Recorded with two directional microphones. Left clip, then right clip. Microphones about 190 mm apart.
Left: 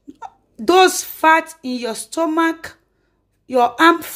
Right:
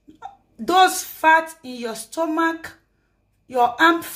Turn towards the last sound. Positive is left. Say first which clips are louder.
# left 3 dB
turn(degrees=45)  # may be behind; listen again after turning